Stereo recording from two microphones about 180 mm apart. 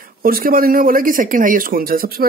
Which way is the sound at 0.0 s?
55° right (ahead or behind).